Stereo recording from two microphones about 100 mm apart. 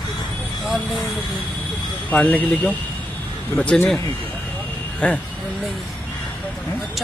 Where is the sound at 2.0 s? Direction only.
15° left (ahead or behind).